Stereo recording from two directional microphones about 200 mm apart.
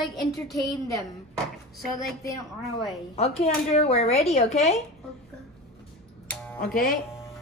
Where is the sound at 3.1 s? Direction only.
30° left (ahead or behind).